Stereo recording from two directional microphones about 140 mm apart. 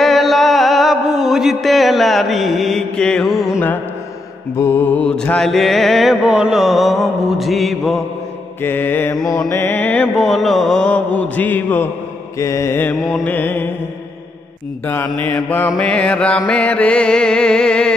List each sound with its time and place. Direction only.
0.0 s mantra: centre (ahead or behind)
3.5 s music: 10° left (ahead or behind)
4.6 s mantra: 15° left (ahead or behind); by 8.0 s centre (ahead or behind)
8.6 s music: 15° left (ahead or behind)
10.2 s music: centre (ahead or behind)
15.0 s music: 10° left (ahead or behind)